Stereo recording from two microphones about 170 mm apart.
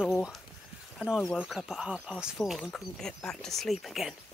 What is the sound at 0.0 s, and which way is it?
Speech, centre (ahead or behind).